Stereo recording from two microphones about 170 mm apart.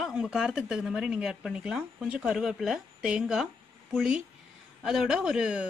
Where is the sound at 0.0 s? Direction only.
5° right (ahead or behind).